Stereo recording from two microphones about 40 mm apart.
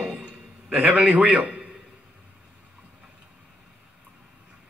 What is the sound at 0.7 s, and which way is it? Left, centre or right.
Speech, right.